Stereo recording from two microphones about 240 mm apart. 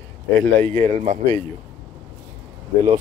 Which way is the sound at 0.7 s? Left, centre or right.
Right.